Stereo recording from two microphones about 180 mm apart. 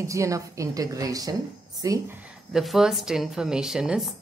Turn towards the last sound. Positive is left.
turn(degrees=-5)  # may be behind; listen again after turning